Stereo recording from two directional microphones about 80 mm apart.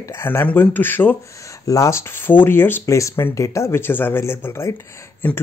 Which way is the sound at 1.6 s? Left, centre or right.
Left.